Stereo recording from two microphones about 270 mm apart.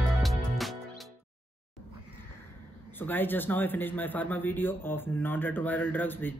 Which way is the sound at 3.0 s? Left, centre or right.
Centre.